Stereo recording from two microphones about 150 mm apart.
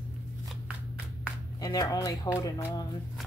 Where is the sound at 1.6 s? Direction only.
25° left (ahead or behind).